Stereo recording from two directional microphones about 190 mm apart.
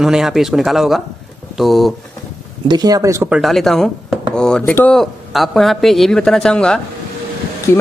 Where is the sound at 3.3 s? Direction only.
Centre (ahead or behind).